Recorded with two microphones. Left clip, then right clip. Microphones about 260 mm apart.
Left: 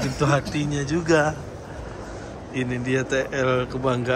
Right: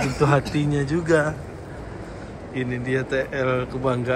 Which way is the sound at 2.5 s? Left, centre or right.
Centre.